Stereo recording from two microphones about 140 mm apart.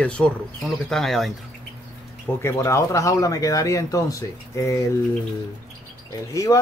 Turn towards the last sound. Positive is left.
turn(degrees=25)  # may be behind; listen again after turning